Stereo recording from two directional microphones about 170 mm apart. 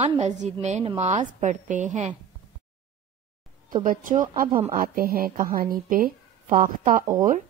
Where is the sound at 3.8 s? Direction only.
50° right (ahead or behind).